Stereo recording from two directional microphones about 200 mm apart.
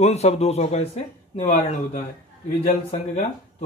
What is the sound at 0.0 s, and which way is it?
Music, 35° left (ahead or behind).